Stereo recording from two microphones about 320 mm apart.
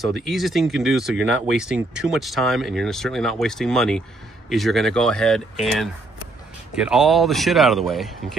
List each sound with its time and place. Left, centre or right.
0.2 s speech: centre